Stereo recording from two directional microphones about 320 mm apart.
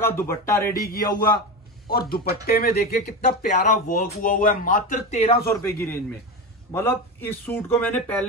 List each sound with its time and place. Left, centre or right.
0.0 s a man's voice: centre
0.8 s speech: left
6.7 s speech: centre